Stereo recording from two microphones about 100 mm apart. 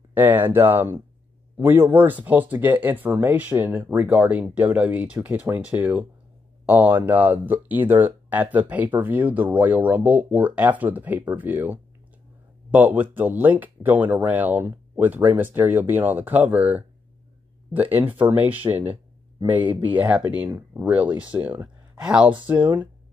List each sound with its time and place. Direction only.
0.1 s speech: 20° right (ahead or behind)